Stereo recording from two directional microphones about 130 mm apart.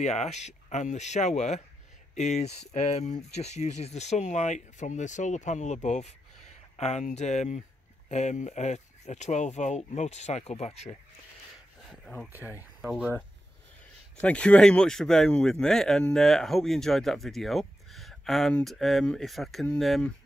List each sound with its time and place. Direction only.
0.0 s speech: 60° left (ahead or behind)
11.9 s speech: 5° left (ahead or behind)
12.3 s speech: 15° right (ahead or behind)
12.8 s speech: centre (ahead or behind)
14.2 s speech: 10° left (ahead or behind)